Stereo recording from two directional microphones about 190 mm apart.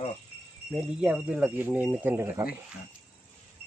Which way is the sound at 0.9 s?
5° right (ahead or behind).